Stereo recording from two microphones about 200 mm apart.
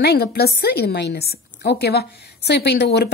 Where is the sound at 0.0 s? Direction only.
55° left (ahead or behind).